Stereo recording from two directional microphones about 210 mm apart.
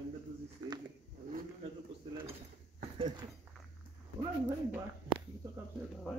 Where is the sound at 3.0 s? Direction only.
20° right (ahead or behind).